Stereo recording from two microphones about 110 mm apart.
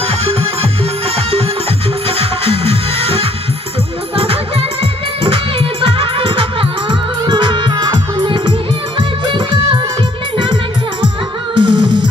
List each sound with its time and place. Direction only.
2.0 s music: 60° right (ahead or behind)
5.2 s music: 55° right (ahead or behind)
11.5 s music: 45° right (ahead or behind)